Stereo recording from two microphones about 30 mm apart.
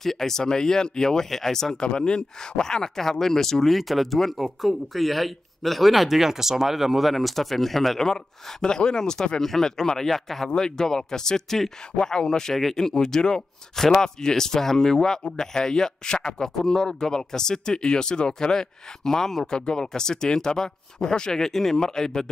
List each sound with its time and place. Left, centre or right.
0.0 s speech: centre
1.8 s speech: left; by 3.7 s centre
3.7 s speech: centre
8.0 s speech: centre
9.4 s speech: centre
10.5 s speech: left
13.7 s speech: centre